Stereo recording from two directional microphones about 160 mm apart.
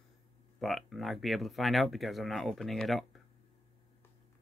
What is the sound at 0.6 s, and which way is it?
Speech, centre (ahead or behind).